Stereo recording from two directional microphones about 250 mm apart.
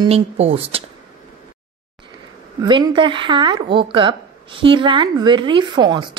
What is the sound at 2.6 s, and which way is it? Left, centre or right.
Speech, centre.